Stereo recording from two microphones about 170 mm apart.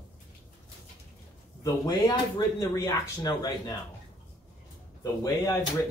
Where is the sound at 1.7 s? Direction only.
25° left (ahead or behind).